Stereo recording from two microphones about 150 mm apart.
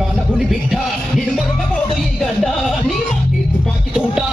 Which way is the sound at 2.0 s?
Centre (ahead or behind).